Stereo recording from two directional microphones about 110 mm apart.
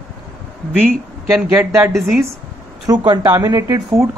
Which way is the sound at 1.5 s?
20° right (ahead or behind).